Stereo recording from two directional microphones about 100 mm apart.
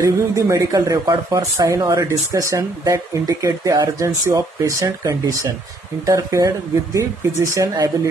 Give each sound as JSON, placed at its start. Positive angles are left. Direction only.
{"t": 0.0, "sound": "speech", "side_deg": -35}